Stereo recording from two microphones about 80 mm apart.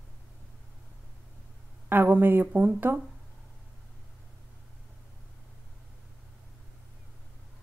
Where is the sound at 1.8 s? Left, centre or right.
Right.